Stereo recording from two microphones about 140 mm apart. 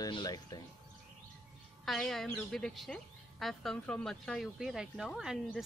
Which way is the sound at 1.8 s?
5° left (ahead or behind).